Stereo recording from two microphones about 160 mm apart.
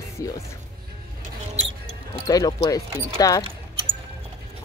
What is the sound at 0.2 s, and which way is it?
Speech, 20° left (ahead or behind).